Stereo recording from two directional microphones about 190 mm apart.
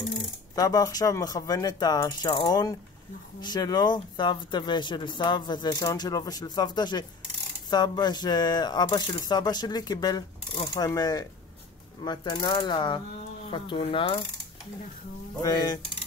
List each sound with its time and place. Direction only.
0.6 s speech: 20° left (ahead or behind)
15.4 s speech: 20° left (ahead or behind)